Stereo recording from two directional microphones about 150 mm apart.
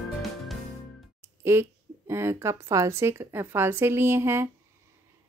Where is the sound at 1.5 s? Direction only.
15° right (ahead or behind).